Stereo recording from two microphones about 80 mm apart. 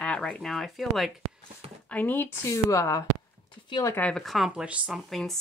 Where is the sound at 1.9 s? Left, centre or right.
Left.